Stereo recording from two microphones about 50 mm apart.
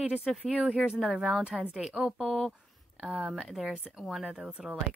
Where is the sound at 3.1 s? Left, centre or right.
Centre.